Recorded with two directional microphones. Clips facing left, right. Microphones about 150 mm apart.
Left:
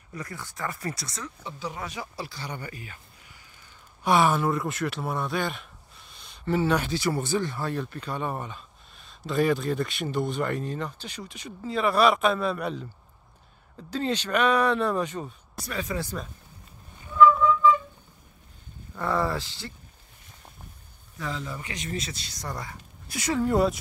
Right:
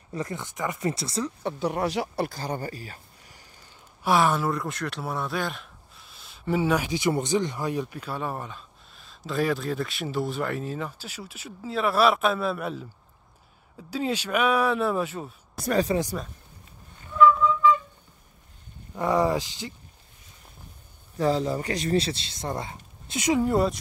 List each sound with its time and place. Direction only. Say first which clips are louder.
0.1 s speech: right 6 dB; 25° right (ahead or behind)
1.4 s speech: right 8 dB; 60° right (ahead or behind); by 3.4 s 35° right (ahead or behind)
4.0 s speech: even; centre (ahead or behind)
15.6 s speech: right 10 dB; 40° right (ahead or behind)
18.9 s speech: right 4 dB; 15° right (ahead or behind)
21.2 s speech: right 10 dB; 35° right (ahead or behind); by 23.5 s 15° right (ahead or behind)
23.5 s speech: even; centre (ahead or behind)